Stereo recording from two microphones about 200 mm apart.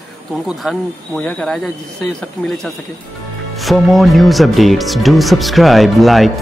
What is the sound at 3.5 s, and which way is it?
Speech, centre (ahead or behind).